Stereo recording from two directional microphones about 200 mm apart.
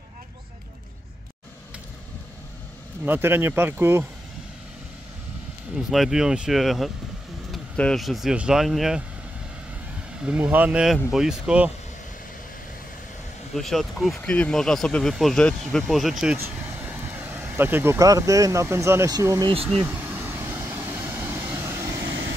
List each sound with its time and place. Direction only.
3.1 s speech: 10° right (ahead or behind)
5.8 s speech: centre (ahead or behind)
10.2 s speech: 5° right (ahead or behind)
13.6 s speech: centre (ahead or behind); by 19.5 s 15° right (ahead or behind)
19.5 s speech: 30° right (ahead or behind)
19.8 s vehicle: 10° right (ahead or behind)